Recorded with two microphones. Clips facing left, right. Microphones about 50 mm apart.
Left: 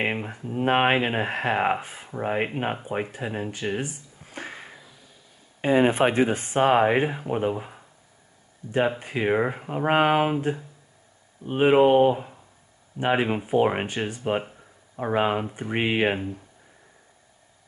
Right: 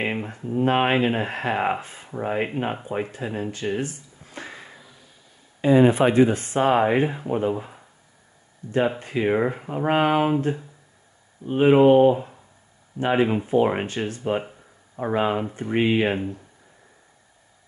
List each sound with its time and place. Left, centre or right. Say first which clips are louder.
0.0 s speech: even; centre
4.3 s sniff: left 1 dB; left
5.6 s speech: right 3 dB; left; by 7.8 s centre
9.0 s speech: right 2 dB; centre
10.3 s speech: right 3 dB; centre
11.4 s speech: right 2 dB; centre